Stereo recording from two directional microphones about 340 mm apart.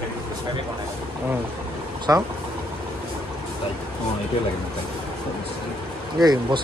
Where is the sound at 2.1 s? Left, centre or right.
Centre.